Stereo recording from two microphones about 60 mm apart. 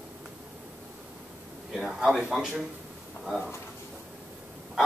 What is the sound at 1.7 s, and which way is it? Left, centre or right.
A man's voice, centre.